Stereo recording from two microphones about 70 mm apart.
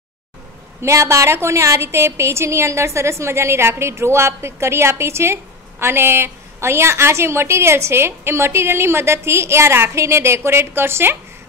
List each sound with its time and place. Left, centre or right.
0.8 s a woman's voice: right